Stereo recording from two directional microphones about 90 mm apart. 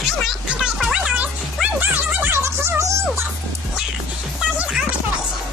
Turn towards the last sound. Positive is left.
turn(degrees=-10)  # may be behind; listen again after turning